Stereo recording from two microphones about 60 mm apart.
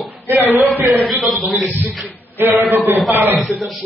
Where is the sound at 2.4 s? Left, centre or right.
Right.